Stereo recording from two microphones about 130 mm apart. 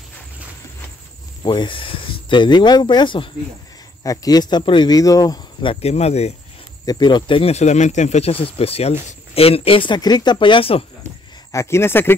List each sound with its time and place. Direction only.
1.4 s speech: 35° left (ahead or behind)
5.7 s speech: 50° left (ahead or behind)
6.9 s speech: 35° left (ahead or behind)
7.5 s speech: 60° left (ahead or behind); by 10.9 s 45° left (ahead or behind)
11.5 s speech: 20° left (ahead or behind)